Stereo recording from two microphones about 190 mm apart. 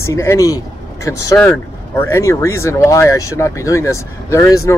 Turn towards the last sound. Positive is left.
turn(degrees=15)  # may be behind; listen again after turning